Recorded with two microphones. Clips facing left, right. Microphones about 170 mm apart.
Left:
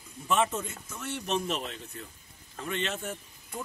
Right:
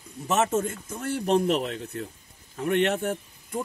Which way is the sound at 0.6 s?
50° right (ahead or behind).